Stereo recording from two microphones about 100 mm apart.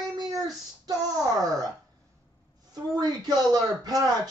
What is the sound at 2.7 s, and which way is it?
Speech, 40° right (ahead or behind).